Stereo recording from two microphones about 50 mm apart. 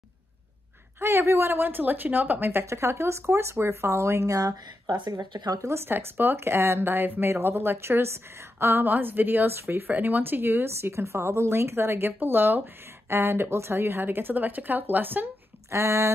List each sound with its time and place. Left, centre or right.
0.9 s speech: right
1.6 s a woman's voice: right
2.6 s speech: right
5.9 s speech: right
8.8 s a woman's voice: right
9.5 s speech: right
9.8 s a woman's voice: right
10.7 s speech: right
12.2 s a woman's voice: right
13.1 s speech: right
15.7 s speech: right